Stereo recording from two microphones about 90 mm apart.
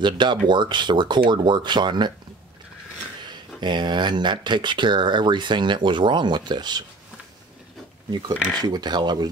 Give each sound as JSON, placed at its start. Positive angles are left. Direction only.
{"t": 0.0, "sound": "speech", "side_deg": -60}
{"t": 3.3, "sound": "speech", "side_deg": -55}
{"t": 8.5, "sound": "speech", "side_deg": -50}